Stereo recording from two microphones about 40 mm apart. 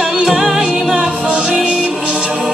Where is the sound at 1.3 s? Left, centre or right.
Right.